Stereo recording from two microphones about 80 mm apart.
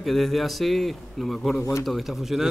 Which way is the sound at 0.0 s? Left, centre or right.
Centre.